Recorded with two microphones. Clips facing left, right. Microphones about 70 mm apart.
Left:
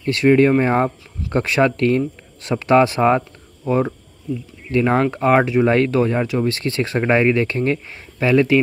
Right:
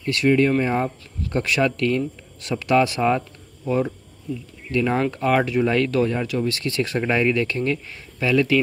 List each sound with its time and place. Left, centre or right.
0.0 s speech: left